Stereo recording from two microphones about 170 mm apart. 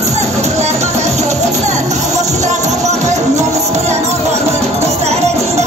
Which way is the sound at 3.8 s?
40° right (ahead or behind).